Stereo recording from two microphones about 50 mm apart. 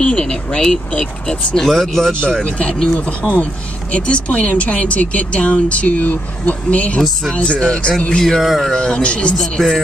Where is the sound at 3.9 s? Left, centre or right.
Left.